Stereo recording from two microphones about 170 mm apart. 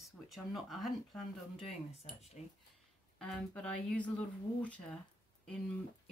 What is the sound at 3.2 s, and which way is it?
Speech, 5° left (ahead or behind).